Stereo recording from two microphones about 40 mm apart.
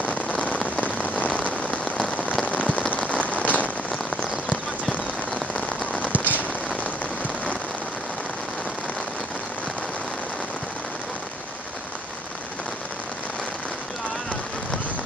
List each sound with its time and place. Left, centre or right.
0.0 s rain on surface: left
5.6 s rain on surface: left
6.2 s a sound: left